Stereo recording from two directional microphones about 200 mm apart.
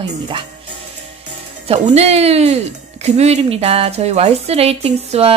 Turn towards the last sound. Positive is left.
turn(degrees=-30)  # may be behind; listen again after turning